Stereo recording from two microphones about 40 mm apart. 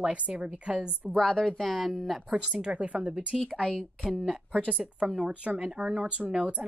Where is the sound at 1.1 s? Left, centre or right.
Centre.